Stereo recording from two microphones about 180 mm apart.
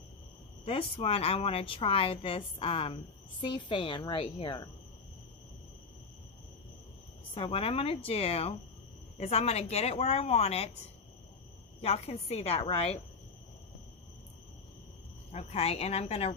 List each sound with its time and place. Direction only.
0.7 s a woman's voice: 30° left (ahead or behind)
7.3 s a woman's voice: 30° left (ahead or behind)
11.8 s a woman's voice: 35° left (ahead or behind)
15.3 s a woman's voice: 35° left (ahead or behind)